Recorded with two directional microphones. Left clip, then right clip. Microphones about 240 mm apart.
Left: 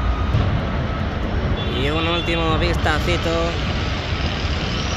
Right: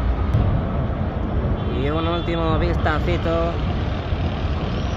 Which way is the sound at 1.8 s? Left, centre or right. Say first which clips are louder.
Left 2 dB; centre.